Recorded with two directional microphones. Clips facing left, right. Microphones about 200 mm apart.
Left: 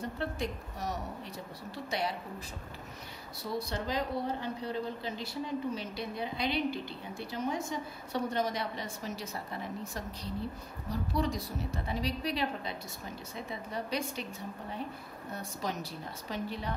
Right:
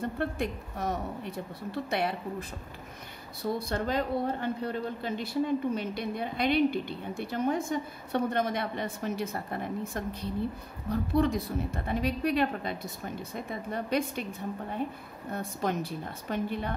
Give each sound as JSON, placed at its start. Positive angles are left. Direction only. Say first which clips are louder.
{"t": 0.0, "sound": "speech", "louder": "right 4 dB", "side_deg": -55}
{"t": 3.5, "sound": "a woman's voice", "louder": "right 2 dB", "side_deg": -55}
{"t": 15.3, "sound": "speech", "louder": "right 6 dB", "side_deg": -55}